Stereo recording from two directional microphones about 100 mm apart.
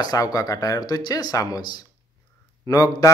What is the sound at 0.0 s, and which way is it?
Speech, 40° left (ahead or behind).